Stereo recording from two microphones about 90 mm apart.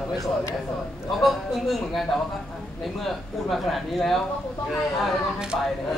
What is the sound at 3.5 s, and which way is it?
Speech, centre (ahead or behind).